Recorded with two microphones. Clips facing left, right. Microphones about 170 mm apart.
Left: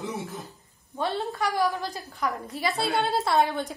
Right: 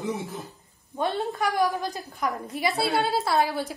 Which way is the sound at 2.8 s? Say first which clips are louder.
Even; centre (ahead or behind).